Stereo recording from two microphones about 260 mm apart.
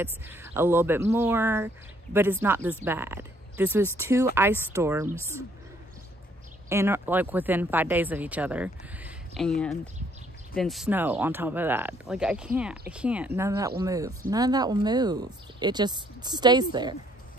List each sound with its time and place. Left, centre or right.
0.0 s speech: centre
6.7 s speech: centre